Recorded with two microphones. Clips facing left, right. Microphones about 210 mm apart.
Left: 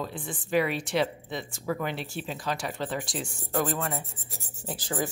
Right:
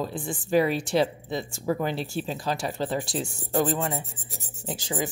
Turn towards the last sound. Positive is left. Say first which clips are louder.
# right 1 dB
turn(degrees=-15)  # may be behind; listen again after turning